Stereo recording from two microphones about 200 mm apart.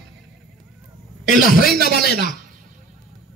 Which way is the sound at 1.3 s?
45° left (ahead or behind).